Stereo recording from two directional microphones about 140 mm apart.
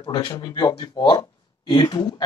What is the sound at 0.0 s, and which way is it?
Speech, 30° left (ahead or behind).